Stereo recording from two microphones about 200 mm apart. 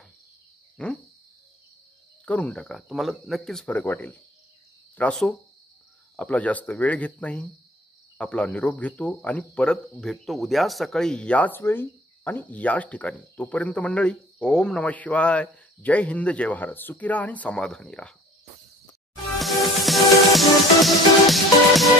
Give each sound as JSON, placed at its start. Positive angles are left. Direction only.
{"t": 0.8, "sound": "speech", "side_deg": 5}
{"t": 2.2, "sound": "speech", "side_deg": 5}
{"t": 19.3, "sound": "music", "side_deg": 0}